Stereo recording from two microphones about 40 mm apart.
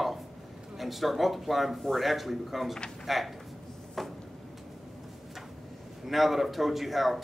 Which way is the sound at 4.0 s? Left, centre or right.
Centre.